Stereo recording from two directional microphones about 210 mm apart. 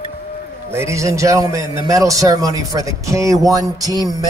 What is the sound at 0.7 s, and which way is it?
A man's voice, 15° right (ahead or behind).